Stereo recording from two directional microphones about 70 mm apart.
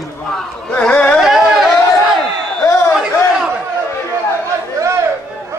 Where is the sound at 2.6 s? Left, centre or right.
Left.